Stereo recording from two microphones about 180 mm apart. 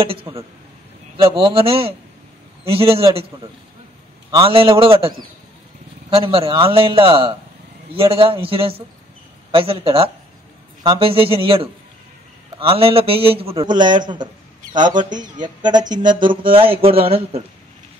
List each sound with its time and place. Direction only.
0.0 s a man's voice: 30° right (ahead or behind)
4.4 s a man's voice: 30° right (ahead or behind)